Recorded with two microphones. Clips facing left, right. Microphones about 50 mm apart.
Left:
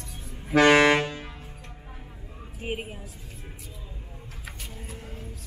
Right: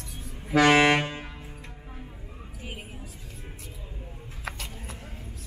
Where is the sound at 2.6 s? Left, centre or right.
Left.